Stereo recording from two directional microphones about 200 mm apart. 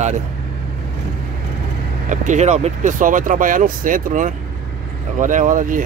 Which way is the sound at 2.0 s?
35° right (ahead or behind).